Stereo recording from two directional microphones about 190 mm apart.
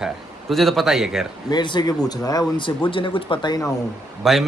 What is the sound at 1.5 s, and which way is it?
Speech, 25° left (ahead or behind).